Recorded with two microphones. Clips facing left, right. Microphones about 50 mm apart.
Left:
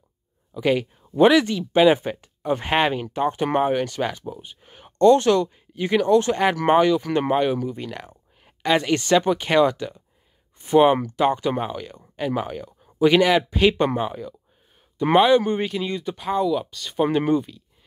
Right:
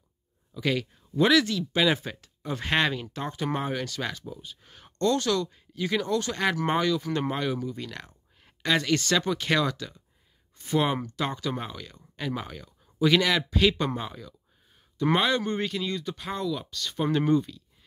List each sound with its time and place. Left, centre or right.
0.6 s speech: left
16.2 s speech: centre